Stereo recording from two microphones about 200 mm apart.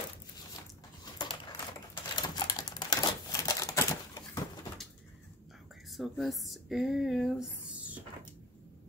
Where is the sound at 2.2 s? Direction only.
20° left (ahead or behind).